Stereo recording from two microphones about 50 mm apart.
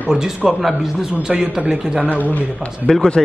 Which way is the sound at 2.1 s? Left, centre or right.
Left.